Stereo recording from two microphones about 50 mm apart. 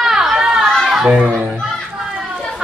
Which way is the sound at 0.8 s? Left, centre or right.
Centre.